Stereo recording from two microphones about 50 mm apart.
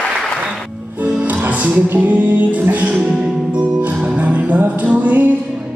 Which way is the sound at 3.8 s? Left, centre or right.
Right.